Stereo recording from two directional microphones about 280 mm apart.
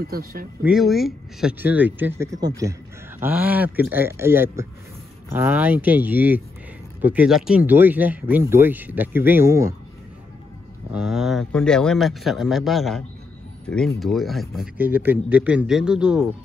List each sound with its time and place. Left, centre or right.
0.0 s speech: right
0.7 s speech: centre
10.9 s speech: centre